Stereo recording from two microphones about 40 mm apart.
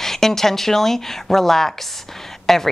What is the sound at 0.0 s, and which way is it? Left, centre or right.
A woman's voice, centre.